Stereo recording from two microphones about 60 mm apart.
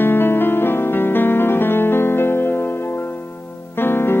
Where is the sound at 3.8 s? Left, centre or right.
Left.